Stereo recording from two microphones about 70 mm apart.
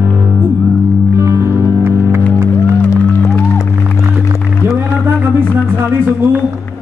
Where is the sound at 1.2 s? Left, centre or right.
Right.